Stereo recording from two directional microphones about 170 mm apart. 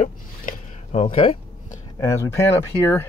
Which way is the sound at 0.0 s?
45° left (ahead or behind).